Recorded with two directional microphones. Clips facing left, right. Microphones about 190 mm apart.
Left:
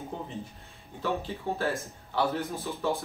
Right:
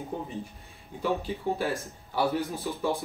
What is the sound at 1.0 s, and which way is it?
Speech, 15° right (ahead or behind).